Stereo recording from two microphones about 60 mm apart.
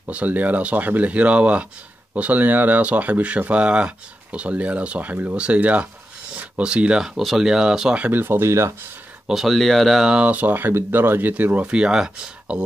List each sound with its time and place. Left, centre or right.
0.1 s speech: right
7.2 s speech: centre
8.1 s speech: right
9.3 s speech: centre
10.0 s speech: centre
10.3 s speech: right; by 12.6 s centre